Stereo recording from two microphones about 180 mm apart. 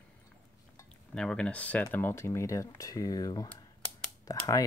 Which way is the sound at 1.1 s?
5° left (ahead or behind).